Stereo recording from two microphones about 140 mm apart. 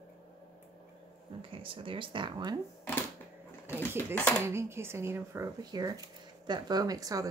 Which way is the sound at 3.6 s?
10° left (ahead or behind).